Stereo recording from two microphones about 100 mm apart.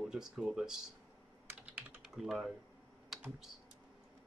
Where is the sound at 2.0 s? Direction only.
5° right (ahead or behind).